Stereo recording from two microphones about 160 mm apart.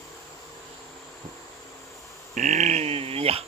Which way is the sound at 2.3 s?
50° right (ahead or behind).